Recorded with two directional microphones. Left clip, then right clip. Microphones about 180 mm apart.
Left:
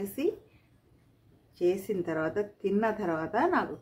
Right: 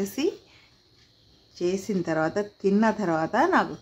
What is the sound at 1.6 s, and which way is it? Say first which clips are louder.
Speech: right 1 dB; 60° right (ahead or behind).